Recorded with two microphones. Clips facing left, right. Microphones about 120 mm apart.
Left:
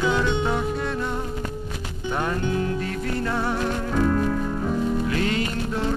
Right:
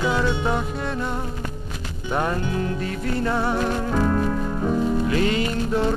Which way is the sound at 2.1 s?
10° right (ahead or behind).